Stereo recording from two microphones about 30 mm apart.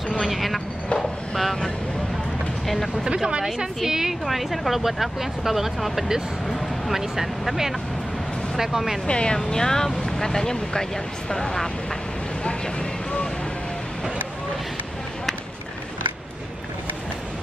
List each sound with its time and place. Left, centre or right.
0.2 s speech: centre
3.4 s a woman's voice: centre
4.3 s a woman's voice: centre
9.0 s speech: left
9.4 s speech: centre